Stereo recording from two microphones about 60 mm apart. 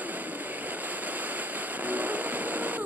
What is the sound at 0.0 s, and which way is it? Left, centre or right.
Vehicle, right.